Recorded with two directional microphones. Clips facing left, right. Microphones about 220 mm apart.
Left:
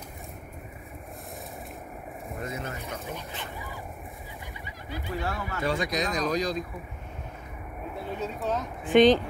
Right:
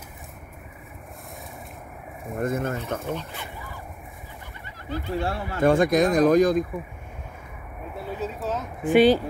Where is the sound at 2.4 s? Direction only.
50° right (ahead or behind).